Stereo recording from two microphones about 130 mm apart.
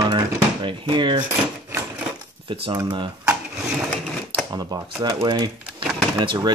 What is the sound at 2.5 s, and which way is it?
Speech, 40° right (ahead or behind).